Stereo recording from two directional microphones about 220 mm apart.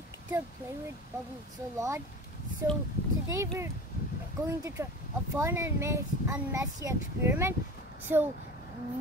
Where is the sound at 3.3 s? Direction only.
15° right (ahead or behind).